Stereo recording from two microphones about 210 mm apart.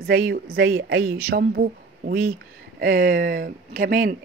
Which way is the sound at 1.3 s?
50° right (ahead or behind).